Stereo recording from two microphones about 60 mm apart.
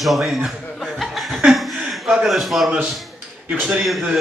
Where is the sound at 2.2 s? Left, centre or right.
Centre.